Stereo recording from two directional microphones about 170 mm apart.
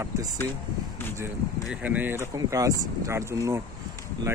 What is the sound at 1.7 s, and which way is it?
Speech, 10° right (ahead or behind).